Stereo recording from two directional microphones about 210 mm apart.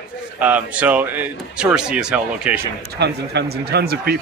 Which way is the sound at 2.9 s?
55° right (ahead or behind).